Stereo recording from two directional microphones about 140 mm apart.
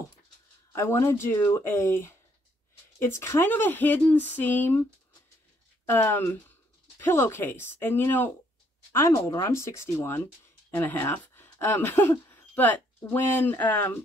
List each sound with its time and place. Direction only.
0.7 s speech: 20° left (ahead or behind)
5.9 s speech: 15° left (ahead or behind)